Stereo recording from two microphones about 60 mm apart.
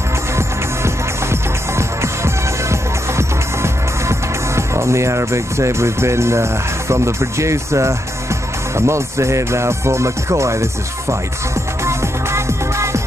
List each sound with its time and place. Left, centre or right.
0.4 s music: right